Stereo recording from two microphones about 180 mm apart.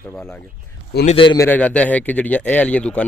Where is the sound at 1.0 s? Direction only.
30° left (ahead or behind).